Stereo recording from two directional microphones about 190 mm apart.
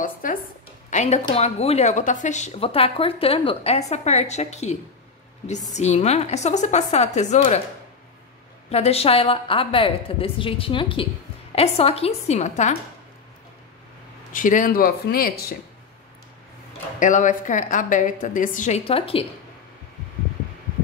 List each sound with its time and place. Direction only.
0.0 s speech: 45° left (ahead or behind)
5.8 s speech: 35° left (ahead or behind)
8.6 s a woman's voice: 35° left (ahead or behind)
14.3 s speech: 45° left (ahead or behind)
17.0 s speech: 40° left (ahead or behind)